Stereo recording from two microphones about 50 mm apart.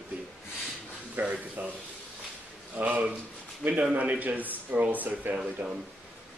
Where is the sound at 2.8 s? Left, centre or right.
Right.